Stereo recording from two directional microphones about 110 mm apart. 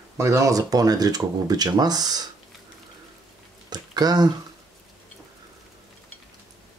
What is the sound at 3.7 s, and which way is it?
Speech, 40° right (ahead or behind).